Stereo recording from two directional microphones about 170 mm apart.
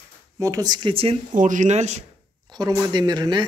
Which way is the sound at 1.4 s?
50° right (ahead or behind).